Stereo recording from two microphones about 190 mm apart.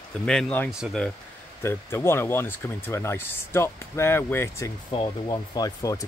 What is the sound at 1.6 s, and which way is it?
Speech, 10° left (ahead or behind).